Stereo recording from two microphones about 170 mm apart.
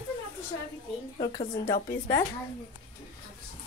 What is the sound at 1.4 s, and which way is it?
Speech, 60° left (ahead or behind).